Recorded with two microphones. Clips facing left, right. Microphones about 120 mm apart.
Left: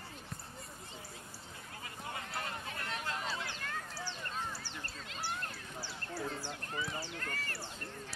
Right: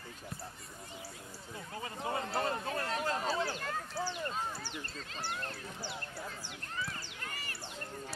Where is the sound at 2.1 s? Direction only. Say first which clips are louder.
Right 8 dB; 35° right (ahead or behind).